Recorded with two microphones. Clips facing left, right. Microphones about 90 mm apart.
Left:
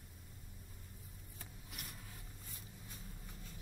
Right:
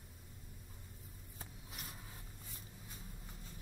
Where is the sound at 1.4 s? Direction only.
35° right (ahead or behind).